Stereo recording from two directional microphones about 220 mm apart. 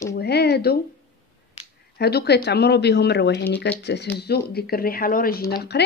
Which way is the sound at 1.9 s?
45° left (ahead or behind).